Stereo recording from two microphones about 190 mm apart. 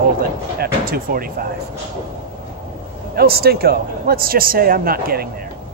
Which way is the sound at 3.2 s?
55° right (ahead or behind).